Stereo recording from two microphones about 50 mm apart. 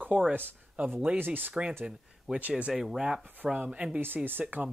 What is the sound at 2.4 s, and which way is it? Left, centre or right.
Speech, right.